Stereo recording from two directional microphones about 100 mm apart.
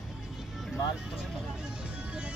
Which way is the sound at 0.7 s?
5° right (ahead or behind).